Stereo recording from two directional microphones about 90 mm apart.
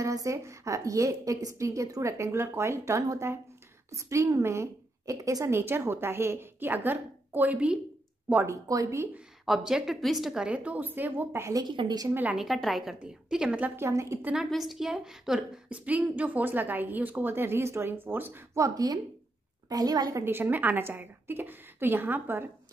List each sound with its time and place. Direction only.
0.0 s a woman's voice: 35° right (ahead or behind); by 7.8 s 15° right (ahead or behind)
8.5 s a woman's voice: 40° right (ahead or behind)
9.5 s a woman's voice: 5° right (ahead or behind); by 11.4 s 20° right (ahead or behind)
11.6 s a woman's voice: 60° right (ahead or behind)
12.1 s a woman's voice: 20° right (ahead or behind)
12.4 s a woman's voice: centre (ahead or behind); by 13.8 s 20° right (ahead or behind)
13.8 s a woman's voice: 30° right (ahead or behind)
14.5 s a woman's voice: centre (ahead or behind); by 18.4 s 20° right (ahead or behind)
18.5 s a woman's voice: 40° right (ahead or behind)
20.2 s a woman's voice: 25° right (ahead or behind)